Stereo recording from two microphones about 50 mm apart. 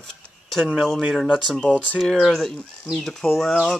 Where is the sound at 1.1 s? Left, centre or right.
Centre.